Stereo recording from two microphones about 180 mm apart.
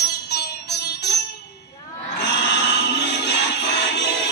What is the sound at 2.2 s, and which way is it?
Music, 75° left (ahead or behind).